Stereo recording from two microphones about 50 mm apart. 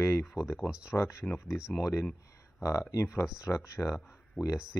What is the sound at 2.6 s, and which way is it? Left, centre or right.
Speech, left.